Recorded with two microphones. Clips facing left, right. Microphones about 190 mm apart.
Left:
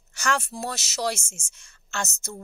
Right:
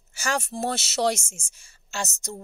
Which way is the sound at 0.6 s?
25° right (ahead or behind).